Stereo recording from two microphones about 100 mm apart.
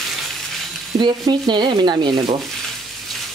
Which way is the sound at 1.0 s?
50° right (ahead or behind).